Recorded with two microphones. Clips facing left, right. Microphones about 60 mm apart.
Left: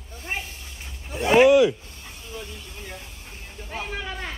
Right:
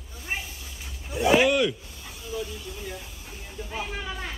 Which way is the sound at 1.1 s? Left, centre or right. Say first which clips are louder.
Left 2 dB; centre.